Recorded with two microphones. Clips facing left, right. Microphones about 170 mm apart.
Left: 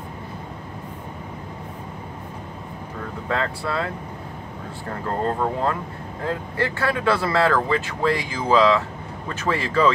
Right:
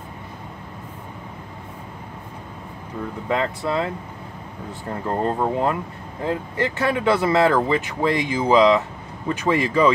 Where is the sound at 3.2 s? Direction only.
15° right (ahead or behind).